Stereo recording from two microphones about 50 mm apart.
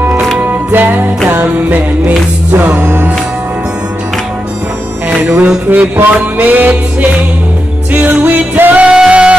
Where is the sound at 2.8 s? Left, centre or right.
Right.